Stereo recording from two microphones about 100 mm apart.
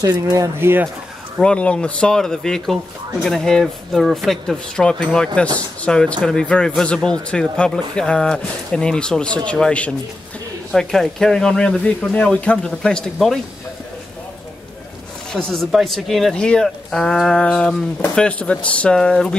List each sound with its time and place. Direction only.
0.0 s speech: 35° right (ahead or behind)
0.6 s speech: 25° right (ahead or behind)
1.4 s speech: 10° left (ahead or behind)
15.3 s speech: 5° left (ahead or behind)